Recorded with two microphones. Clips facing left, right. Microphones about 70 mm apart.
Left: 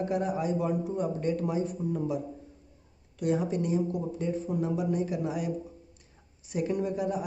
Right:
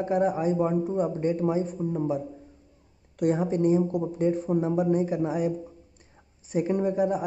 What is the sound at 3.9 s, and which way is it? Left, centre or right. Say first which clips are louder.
Speech: right 6 dB; right.